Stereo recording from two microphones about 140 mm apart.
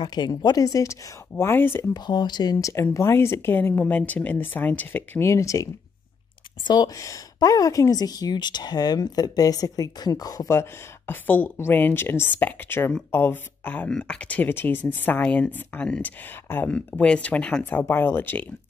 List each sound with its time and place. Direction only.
0.0 s a woman's voice: 30° left (ahead or behind)
2.0 s speech: 30° left (ahead or behind)
2.5 s a woman's voice: 20° left (ahead or behind)